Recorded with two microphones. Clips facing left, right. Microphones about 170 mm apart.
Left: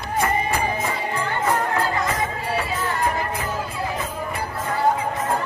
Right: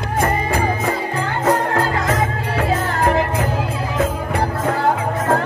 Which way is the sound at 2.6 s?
70° right (ahead or behind).